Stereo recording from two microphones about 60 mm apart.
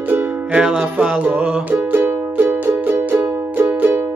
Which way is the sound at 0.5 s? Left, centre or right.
Centre.